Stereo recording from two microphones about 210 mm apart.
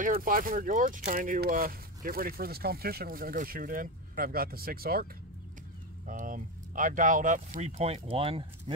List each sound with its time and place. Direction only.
0.0 s speech: 40° right (ahead or behind)
6.0 s speech: 40° right (ahead or behind)